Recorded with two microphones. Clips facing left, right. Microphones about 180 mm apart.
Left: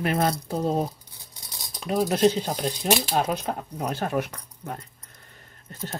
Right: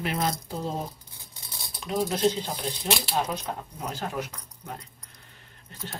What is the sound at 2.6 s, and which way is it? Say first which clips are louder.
Speech: left 6 dB; 45° left (ahead or behind).